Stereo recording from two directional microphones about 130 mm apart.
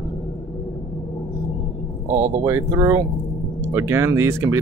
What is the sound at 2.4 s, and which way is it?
Speech, 25° right (ahead or behind).